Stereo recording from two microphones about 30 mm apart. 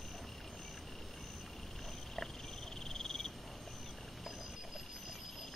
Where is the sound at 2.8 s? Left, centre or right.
Centre.